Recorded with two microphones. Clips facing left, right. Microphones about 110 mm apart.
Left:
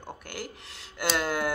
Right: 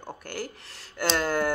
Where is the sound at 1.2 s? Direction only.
40° right (ahead or behind).